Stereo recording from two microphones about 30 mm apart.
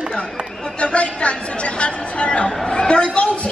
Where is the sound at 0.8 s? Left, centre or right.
Left.